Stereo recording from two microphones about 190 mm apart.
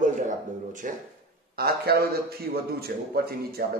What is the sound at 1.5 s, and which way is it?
A man's voice, 55° right (ahead or behind).